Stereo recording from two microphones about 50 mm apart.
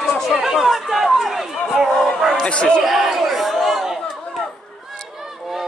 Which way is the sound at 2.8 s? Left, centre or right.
Centre.